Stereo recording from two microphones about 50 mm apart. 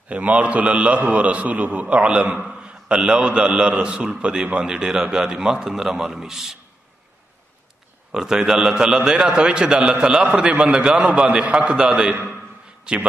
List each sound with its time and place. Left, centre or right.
0.1 s a man's voice: right; by 6.6 s centre
8.1 s a man's voice: centre